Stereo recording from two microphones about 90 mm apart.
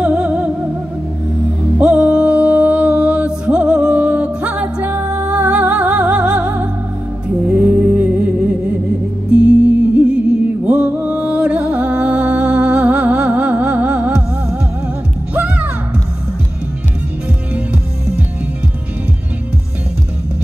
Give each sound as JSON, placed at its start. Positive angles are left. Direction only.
{"t": 0.0, "sound": "music", "side_deg": -10}
{"t": 1.8, "sound": "music", "side_deg": -10}